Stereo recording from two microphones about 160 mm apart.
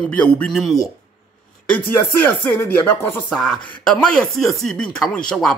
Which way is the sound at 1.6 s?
10° left (ahead or behind).